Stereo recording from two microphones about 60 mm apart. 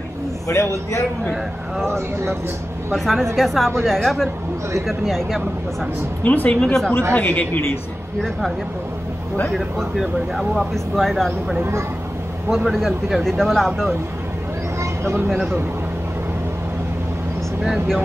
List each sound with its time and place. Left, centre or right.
0.5 s a man's voice: left
1.9 s speech: right
2.9 s speech: centre
6.2 s speech: left
6.6 s a woman's voice: centre
7.1 s speech: left
8.2 s speech: centre
9.8 s speech: centre
12.6 s speech: centre
14.8 s a sound: right
15.2 s speech: centre